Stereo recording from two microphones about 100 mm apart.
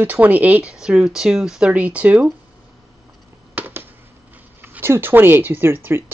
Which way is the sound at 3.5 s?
15° right (ahead or behind).